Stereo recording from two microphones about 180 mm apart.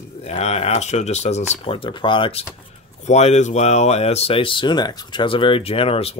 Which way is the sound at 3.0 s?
40° left (ahead or behind).